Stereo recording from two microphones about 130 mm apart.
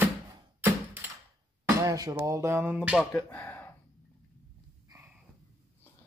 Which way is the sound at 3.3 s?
15° left (ahead or behind).